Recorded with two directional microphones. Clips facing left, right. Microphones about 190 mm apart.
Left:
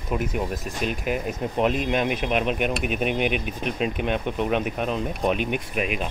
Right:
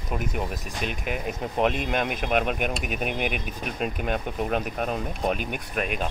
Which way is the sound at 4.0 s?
45° right (ahead or behind).